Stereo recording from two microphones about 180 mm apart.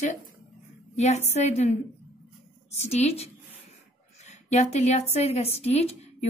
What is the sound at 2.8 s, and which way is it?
Speech, 35° left (ahead or behind).